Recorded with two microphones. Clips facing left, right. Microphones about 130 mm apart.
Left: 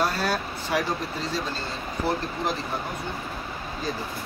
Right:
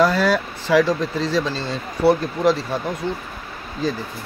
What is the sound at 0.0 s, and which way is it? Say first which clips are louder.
Speech: right 8 dB; 90° right.